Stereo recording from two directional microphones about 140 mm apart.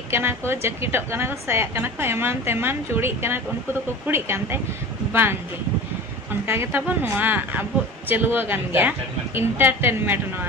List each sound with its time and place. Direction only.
0.1 s a woman's voice: 15° right (ahead or behind)
6.4 s a woman's voice: 20° right (ahead or behind)